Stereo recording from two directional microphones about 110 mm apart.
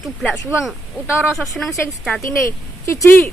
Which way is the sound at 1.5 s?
Centre (ahead or behind).